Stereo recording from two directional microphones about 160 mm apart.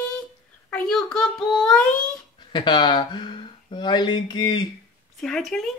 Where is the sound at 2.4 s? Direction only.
30° left (ahead or behind).